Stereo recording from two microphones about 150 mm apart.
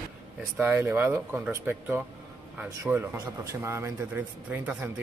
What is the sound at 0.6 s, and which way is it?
Speech, 15° right (ahead or behind).